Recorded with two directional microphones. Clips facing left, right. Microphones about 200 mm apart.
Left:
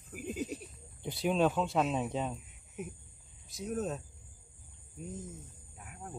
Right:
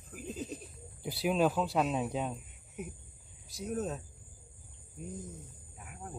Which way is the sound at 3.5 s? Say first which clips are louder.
Even; centre (ahead or behind).